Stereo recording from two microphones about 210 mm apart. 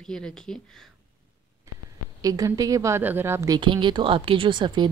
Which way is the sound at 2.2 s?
15° right (ahead or behind).